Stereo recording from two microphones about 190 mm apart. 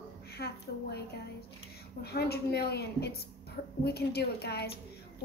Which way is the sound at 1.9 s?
55° left (ahead or behind).